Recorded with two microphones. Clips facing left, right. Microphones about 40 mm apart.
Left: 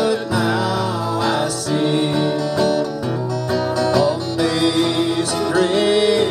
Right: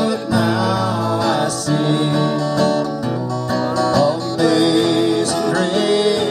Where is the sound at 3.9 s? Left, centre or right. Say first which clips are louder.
Right 1 dB; left.